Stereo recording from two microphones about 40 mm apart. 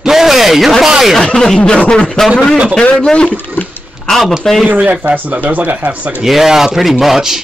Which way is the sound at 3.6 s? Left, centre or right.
Left.